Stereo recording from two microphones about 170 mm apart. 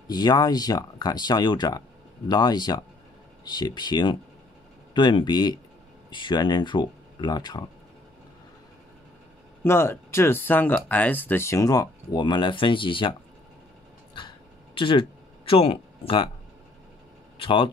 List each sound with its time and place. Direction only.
0.1 s speech: 25° left (ahead or behind)
9.6 s speech: 15° left (ahead or behind); by 13.1 s 30° left (ahead or behind)
14.1 s a sound: 30° left (ahead or behind)
17.4 s speech: 30° left (ahead or behind)